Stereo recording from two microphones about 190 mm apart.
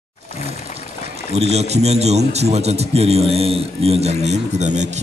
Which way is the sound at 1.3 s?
35° right (ahead or behind).